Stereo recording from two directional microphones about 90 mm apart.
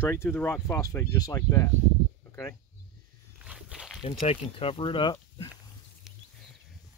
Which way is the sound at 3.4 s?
10° right (ahead or behind).